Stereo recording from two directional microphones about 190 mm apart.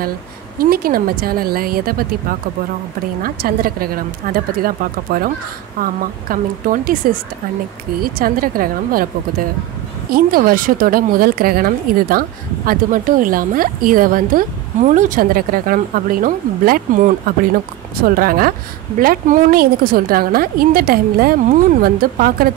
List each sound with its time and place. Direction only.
0.6 s a woman's voice: 50° right (ahead or behind)
3.2 s a woman's voice: 50° right (ahead or behind)